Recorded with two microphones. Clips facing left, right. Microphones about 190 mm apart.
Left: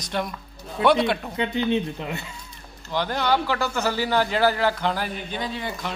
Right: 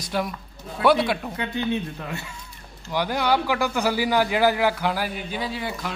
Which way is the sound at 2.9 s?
10° right (ahead or behind).